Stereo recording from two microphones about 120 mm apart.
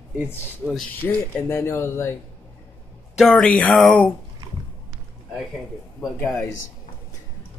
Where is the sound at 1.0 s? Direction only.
20° left (ahead or behind).